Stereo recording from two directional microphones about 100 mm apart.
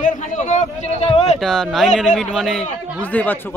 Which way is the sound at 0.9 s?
90° left.